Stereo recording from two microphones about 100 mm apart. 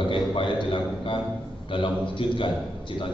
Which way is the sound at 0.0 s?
55° left (ahead or behind).